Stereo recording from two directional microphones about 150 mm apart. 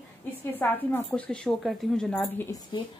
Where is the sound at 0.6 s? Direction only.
10° left (ahead or behind).